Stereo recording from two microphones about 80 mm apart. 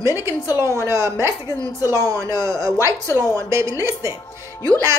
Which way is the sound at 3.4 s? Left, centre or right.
Right.